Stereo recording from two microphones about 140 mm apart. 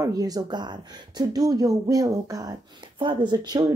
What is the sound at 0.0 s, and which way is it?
Speech, 25° right (ahead or behind).